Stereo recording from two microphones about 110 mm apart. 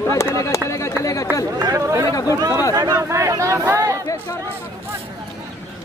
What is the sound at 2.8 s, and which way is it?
Speech, 25° right (ahead or behind).